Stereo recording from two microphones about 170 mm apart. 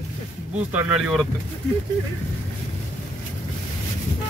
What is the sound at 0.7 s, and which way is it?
Speech, 10° right (ahead or behind).